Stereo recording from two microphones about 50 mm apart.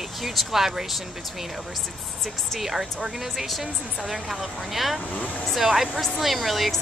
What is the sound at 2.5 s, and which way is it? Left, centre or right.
Speech, centre.